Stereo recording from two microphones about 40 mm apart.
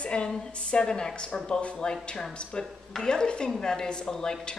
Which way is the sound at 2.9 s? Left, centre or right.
Centre.